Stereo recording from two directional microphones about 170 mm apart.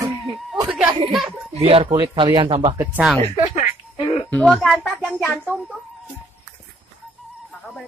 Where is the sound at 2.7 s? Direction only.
10° right (ahead or behind).